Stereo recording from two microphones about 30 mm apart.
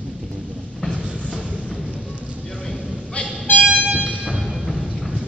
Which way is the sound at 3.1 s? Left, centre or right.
Left.